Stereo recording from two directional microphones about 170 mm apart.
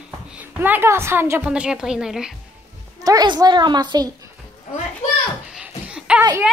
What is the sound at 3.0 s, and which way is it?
A woman's voice, 25° right (ahead or behind).